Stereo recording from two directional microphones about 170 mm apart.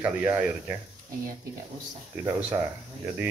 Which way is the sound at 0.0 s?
10° right (ahead or behind).